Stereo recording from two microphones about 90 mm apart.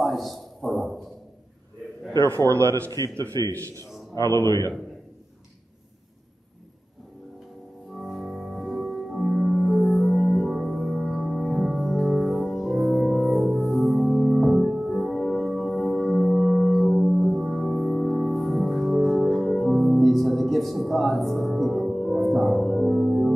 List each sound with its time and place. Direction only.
0.0 s a sound: centre (ahead or behind)
2.2 s a man's voice: 30° right (ahead or behind)
4.1 s a man's voice: 35° left (ahead or behind)
7.9 s music: centre (ahead or behind)